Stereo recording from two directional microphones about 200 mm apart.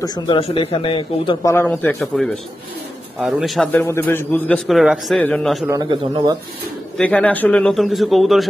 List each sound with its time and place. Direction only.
0.0 s speech: 20° left (ahead or behind)
1.5 s a man's voice: 10° left (ahead or behind)
3.7 s a man's voice: 15° left (ahead or behind)
5.7 s a man's voice: 20° right (ahead or behind)
7.0 s a man's voice: 5° left (ahead or behind)